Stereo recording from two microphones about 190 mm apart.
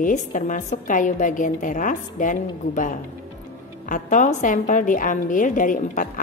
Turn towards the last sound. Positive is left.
turn(degrees=45)  # may be behind; listen again after turning